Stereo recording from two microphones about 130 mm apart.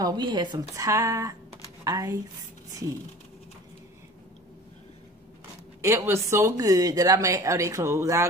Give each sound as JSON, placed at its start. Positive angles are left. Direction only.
{"t": 0.0, "sound": "speech", "side_deg": -35}
{"t": 5.8, "sound": "speech", "side_deg": -20}